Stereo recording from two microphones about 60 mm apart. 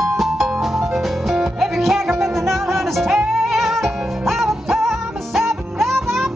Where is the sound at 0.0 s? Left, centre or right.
Centre.